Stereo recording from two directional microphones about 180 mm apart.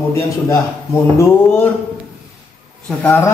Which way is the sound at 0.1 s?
15° left (ahead or behind).